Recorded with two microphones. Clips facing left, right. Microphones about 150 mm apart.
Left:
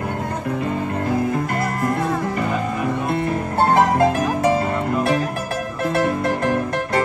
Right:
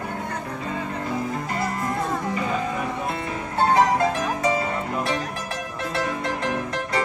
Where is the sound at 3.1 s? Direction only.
55° left (ahead or behind).